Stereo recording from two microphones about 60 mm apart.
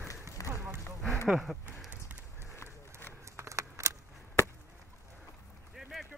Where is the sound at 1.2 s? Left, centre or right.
Centre.